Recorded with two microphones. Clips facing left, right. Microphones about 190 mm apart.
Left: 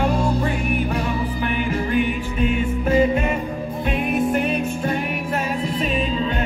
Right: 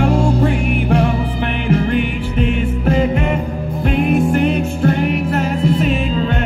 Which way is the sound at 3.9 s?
90° right.